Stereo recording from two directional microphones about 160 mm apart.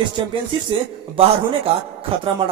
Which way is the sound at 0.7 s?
35° right (ahead or behind).